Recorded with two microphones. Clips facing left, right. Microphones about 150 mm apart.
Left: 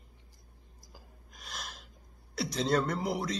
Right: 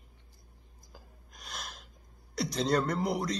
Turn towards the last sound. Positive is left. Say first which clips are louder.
# right 2 dB
turn(degrees=0)  # may be behind; listen again after turning